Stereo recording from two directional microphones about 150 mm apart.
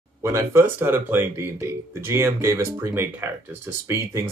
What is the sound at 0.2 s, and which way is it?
Speech, 20° right (ahead or behind).